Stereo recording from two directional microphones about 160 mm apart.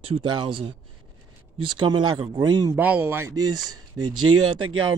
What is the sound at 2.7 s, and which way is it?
Speech, 10° right (ahead or behind).